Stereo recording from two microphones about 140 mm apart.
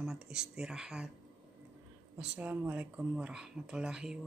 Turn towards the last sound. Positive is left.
turn(degrees=-5)  # may be behind; listen again after turning